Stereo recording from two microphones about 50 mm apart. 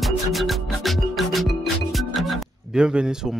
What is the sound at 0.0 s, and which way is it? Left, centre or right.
Music, centre.